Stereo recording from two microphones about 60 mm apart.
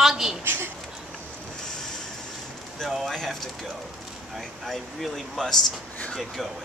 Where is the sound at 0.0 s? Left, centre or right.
Centre.